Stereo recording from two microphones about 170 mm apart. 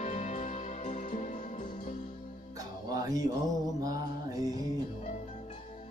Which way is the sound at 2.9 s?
20° right (ahead or behind).